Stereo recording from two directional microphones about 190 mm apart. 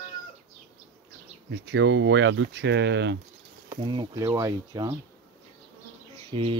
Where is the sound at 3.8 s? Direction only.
20° right (ahead or behind).